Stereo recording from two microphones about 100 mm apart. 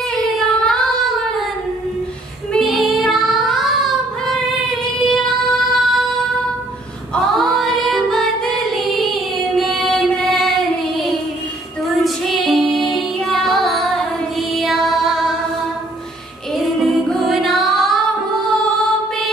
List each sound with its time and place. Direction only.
0.1 s child singing: 5° left (ahead or behind)
2.5 s child singing: centre (ahead or behind)
7.3 s music: centre (ahead or behind)
16.5 s music: centre (ahead or behind)